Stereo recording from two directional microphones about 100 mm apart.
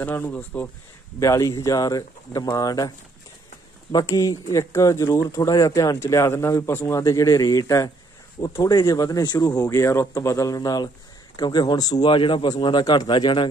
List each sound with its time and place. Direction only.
0.0 s speech: 20° left (ahead or behind)
1.2 s speech: 30° left (ahead or behind)
3.9 s speech: 35° left (ahead or behind)
7.0 s a man's voice: 35° left (ahead or behind)
12.1 s a man's voice: 60° left (ahead or behind)